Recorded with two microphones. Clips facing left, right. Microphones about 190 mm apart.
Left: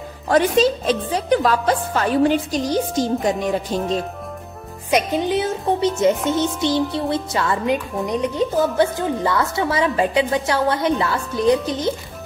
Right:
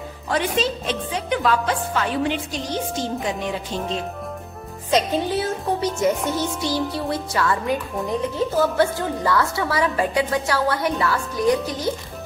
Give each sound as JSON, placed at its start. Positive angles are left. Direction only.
{"t": 0.3, "sound": "speech", "side_deg": 40}
{"t": 4.9, "sound": "speech", "side_deg": 15}